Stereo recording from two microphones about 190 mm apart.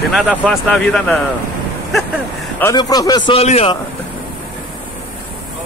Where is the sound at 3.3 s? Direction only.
30° left (ahead or behind).